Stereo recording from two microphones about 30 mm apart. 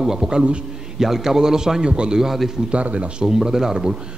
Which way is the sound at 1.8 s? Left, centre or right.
Right.